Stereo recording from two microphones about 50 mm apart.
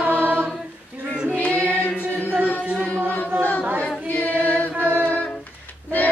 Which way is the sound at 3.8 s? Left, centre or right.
Left.